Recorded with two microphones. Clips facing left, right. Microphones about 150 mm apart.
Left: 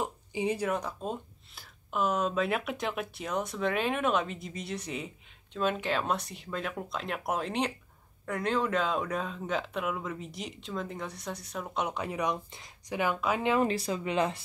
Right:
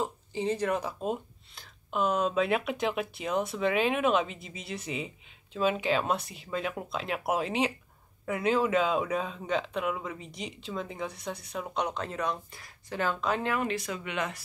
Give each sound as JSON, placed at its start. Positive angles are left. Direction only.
{"t": 0.0, "sound": "a sound", "side_deg": 15}
{"t": 0.7, "sound": "speech", "side_deg": -5}
{"t": 13.6, "sound": "speech", "side_deg": 35}